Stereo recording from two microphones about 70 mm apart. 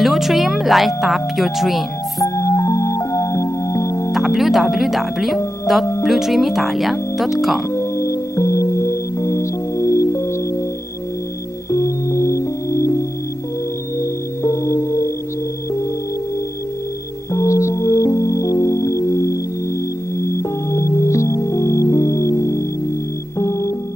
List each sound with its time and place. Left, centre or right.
0.0 s speech: centre
2.2 s music: left
4.1 s speech: centre
7.7 s music: left
11.7 s music: left
13.9 s singing bowl: left
17.3 s music: left